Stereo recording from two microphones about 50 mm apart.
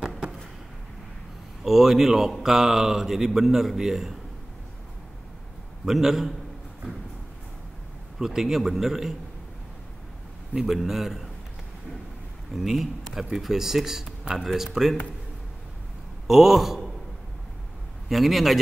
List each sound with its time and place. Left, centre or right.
1.6 s speech: centre
5.9 s speech: centre
8.2 s speech: centre
10.5 s a man's voice: centre
10.8 s a man's voice: centre
12.5 s a man's voice: centre
16.3 s a man's voice: centre
18.0 s a man's voice: centre